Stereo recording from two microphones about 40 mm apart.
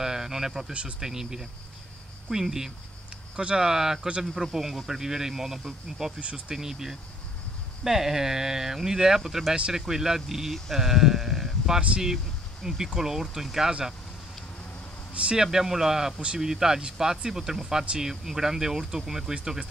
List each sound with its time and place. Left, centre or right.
0.0 s a sound: centre
0.9 s speech: centre
6.1 s speech: right
6.5 s speech: centre
15.3 s speech: centre